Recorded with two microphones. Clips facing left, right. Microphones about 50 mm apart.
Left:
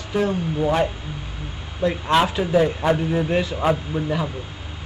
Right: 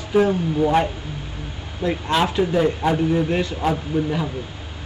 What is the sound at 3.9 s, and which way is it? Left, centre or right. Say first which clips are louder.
Speech: right 4 dB; left.